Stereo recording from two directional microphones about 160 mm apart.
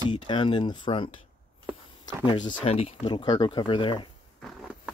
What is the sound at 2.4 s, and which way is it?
Speech, 40° left (ahead or behind).